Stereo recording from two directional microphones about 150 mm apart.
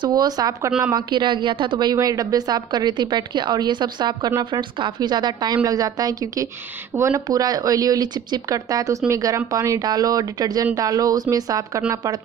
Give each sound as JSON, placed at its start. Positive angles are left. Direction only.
{"t": 0.0, "sound": "a woman's voice", "side_deg": -25}
{"t": 0.7, "sound": "speech", "side_deg": -10}
{"t": 0.9, "sound": "a woman's voice", "side_deg": -30}